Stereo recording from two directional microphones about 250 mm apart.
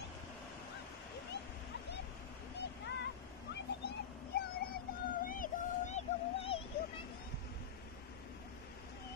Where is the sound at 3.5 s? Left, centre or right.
Left.